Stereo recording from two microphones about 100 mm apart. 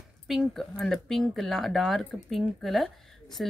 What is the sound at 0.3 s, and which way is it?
Speech, centre (ahead or behind).